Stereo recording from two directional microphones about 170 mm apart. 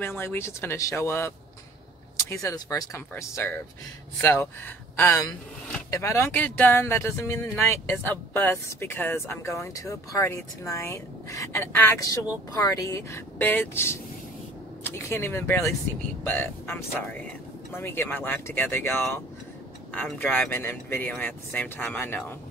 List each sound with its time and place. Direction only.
0.0 s speech: 15° left (ahead or behind)
4.9 s speech: 15° left (ahead or behind)